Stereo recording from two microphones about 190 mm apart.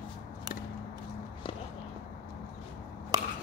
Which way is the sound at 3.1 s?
20° right (ahead or behind).